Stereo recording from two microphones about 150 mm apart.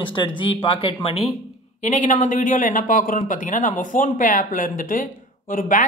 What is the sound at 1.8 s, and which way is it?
A man's voice, 55° left (ahead or behind).